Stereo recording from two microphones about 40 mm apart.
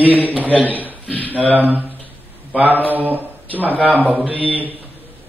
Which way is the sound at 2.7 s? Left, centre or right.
Right.